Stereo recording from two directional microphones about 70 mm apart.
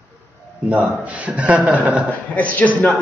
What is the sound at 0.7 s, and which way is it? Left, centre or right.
A man's voice, centre.